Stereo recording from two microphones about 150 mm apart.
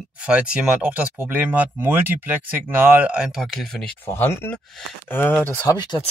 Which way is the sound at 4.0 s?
15° left (ahead or behind).